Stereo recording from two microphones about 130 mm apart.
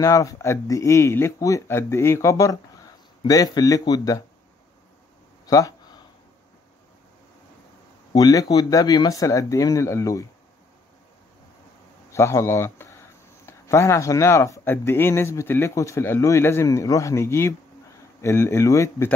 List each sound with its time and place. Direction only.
0.0 s speech: 25° left (ahead or behind)
8.1 s speech: 30° left (ahead or behind)
12.1 s speech: 20° left (ahead or behind)